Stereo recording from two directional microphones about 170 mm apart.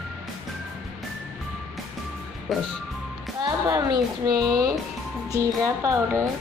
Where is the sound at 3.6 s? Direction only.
20° right (ahead or behind).